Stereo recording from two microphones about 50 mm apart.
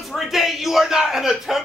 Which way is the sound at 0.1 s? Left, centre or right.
Centre.